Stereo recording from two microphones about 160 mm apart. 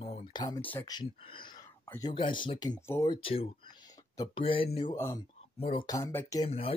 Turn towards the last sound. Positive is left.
turn(degrees=35)  # may be behind; listen again after turning